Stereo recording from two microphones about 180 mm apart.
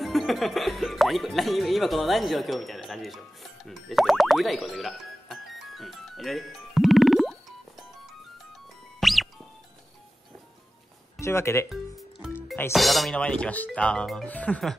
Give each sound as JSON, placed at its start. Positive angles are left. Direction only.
{"t": 0.0, "sound": "speech", "side_deg": 0}
{"t": 3.6, "sound": "music", "side_deg": 0}
{"t": 9.0, "sound": "music", "side_deg": 0}
{"t": 11.1, "sound": "speech", "side_deg": 15}
{"t": 12.0, "sound": "music", "side_deg": -5}
{"t": 12.7, "sound": "speech", "side_deg": 0}